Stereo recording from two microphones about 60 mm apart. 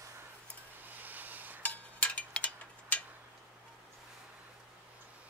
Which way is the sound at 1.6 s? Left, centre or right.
Left.